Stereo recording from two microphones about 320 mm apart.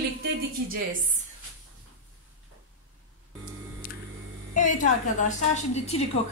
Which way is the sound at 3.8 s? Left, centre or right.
Left.